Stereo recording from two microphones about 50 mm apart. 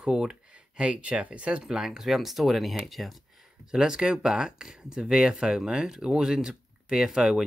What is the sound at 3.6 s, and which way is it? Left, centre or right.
Speech, centre.